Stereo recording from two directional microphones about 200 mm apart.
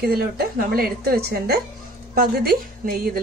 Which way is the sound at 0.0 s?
50° right (ahead or behind).